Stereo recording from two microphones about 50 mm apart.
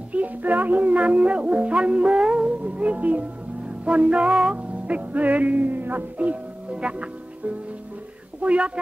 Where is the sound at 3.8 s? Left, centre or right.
Right.